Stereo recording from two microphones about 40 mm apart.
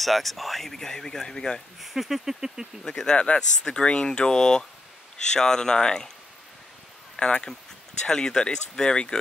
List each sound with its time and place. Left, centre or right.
0.0 s speech: centre
1.8 s speech: centre
2.8 s speech: centre
7.2 s speech: left